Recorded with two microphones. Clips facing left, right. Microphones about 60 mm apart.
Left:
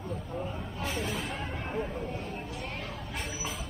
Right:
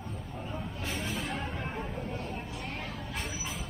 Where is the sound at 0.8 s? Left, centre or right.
Centre.